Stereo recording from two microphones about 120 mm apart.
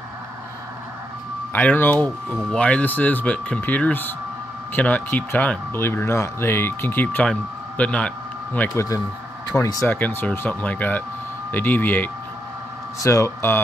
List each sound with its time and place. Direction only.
1.5 s speech: 15° left (ahead or behind)
8.7 s speech: 30° left (ahead or behind)
9.8 s speech: 15° left (ahead or behind)